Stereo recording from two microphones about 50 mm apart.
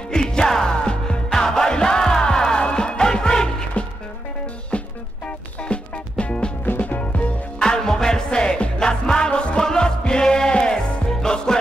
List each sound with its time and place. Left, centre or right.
0.1 s music: centre
5.7 s music: left
6.6 s music: left
7.6 s music: centre